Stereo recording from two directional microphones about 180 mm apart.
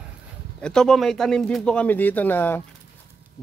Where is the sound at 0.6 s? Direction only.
5° left (ahead or behind).